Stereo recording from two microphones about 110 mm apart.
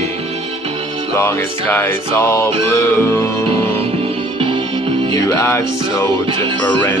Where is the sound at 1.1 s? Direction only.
20° left (ahead or behind).